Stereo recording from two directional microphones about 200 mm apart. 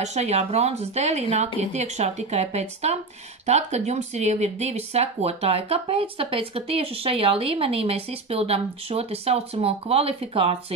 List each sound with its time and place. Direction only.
0.0 s speech: 35° right (ahead or behind)